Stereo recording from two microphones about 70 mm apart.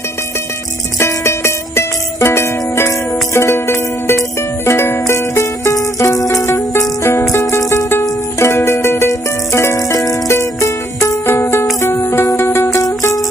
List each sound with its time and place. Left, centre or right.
0.9 s music: left
6.5 s music: left
11.2 s music: left
12.8 s music: left